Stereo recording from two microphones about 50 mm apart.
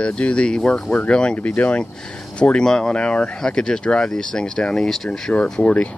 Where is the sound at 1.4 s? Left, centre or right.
Left; by 5.7 s centre.